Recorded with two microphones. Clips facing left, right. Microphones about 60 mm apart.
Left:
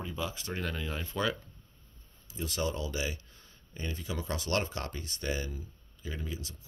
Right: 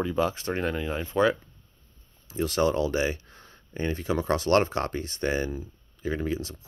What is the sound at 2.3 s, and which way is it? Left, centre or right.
Speech, right.